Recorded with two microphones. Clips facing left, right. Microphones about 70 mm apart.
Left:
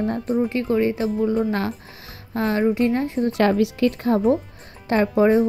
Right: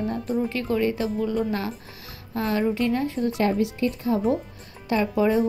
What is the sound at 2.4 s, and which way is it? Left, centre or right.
Speech, left.